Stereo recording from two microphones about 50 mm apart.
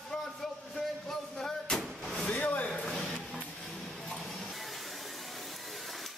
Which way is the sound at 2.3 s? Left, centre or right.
Left.